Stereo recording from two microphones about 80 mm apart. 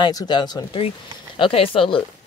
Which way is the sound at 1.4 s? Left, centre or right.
Left.